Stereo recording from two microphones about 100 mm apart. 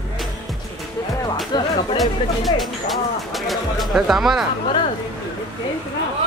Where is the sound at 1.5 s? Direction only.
45° left (ahead or behind).